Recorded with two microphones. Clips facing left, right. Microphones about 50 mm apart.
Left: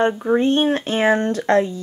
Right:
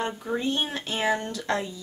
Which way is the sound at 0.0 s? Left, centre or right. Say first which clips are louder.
Left 11 dB; left.